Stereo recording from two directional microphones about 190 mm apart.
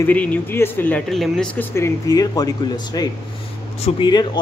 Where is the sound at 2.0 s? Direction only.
20° left (ahead or behind).